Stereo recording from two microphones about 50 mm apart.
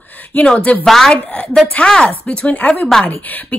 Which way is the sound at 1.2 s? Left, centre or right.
Left.